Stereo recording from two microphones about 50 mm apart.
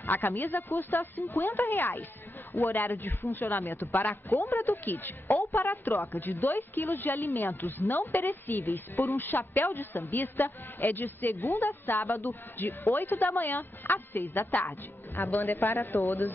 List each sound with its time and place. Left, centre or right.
0.0 s a woman's voice: left
0.7 s a woman's voice: left
8.9 s speech: left
9.2 s a woman's voice: left
9.6 s speech: left
12.9 s a woman's voice: left